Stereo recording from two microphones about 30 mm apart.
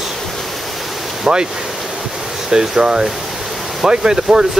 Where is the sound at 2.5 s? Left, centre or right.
Right.